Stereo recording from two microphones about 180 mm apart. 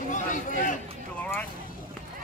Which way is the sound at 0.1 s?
45° left (ahead or behind).